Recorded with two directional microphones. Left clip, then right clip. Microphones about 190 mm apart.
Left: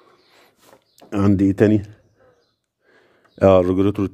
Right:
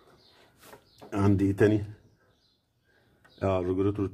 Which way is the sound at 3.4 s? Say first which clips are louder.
Left 14 dB; 55° left (ahead or behind).